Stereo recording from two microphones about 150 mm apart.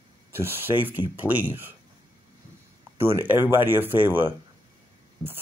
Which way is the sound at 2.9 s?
15° right (ahead or behind).